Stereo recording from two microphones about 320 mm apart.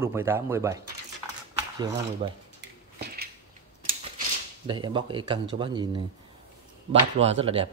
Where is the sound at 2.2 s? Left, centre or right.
Centre.